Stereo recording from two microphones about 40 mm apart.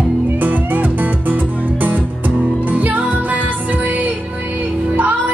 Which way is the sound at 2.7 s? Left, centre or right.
Right.